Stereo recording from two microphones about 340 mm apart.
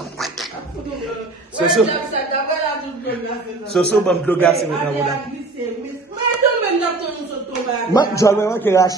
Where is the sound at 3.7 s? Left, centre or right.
Centre.